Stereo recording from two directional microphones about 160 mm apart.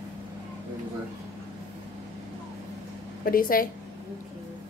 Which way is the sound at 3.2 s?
65° left (ahead or behind).